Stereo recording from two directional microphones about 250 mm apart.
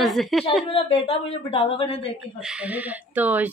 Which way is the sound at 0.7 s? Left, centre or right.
Left.